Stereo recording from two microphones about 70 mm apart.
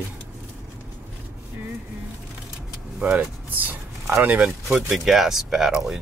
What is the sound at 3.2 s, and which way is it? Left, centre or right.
Speech, right.